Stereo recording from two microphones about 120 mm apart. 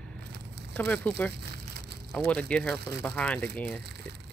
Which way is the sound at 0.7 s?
10° left (ahead or behind).